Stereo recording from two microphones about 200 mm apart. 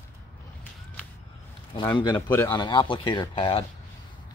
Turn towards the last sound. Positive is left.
turn(degrees=25)  # may be behind; listen again after turning